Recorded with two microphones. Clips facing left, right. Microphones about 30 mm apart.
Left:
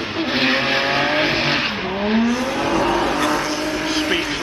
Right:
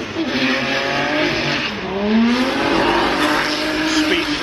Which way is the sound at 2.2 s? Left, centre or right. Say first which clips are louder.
Right 3 dB; right.